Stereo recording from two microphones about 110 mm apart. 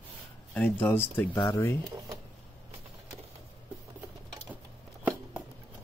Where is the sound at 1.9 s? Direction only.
35° right (ahead or behind).